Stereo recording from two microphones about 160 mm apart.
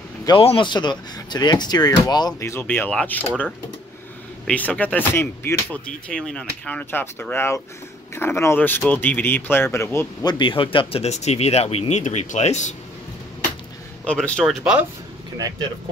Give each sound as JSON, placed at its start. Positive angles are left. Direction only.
{"t": 0.4, "sound": "speech", "side_deg": 35}
{"t": 4.5, "sound": "speech", "side_deg": 10}
{"t": 10.4, "sound": "speech", "side_deg": 35}
{"t": 14.0, "sound": "speech", "side_deg": 5}
{"t": 14.6, "sound": "speech", "side_deg": -5}